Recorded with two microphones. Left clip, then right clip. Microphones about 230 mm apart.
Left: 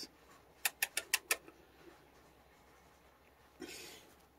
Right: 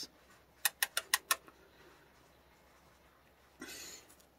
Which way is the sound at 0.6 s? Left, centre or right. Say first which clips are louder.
Right 3 dB; right.